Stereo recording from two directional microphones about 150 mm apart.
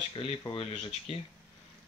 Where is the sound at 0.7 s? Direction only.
45° left (ahead or behind).